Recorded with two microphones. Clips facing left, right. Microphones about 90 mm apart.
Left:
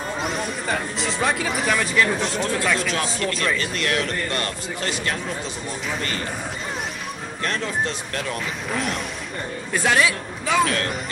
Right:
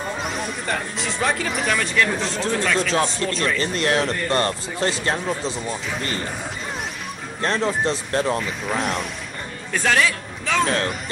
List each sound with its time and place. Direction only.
0.2 s speech: centre (ahead or behind)
2.9 s speech: 30° right (ahead or behind)
7.4 s speech: 35° right (ahead or behind)
8.4 s a man's voice: centre (ahead or behind)
10.6 s speech: 30° right (ahead or behind)